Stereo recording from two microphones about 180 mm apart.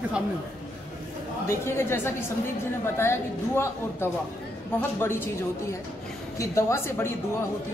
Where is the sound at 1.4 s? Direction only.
15° left (ahead or behind).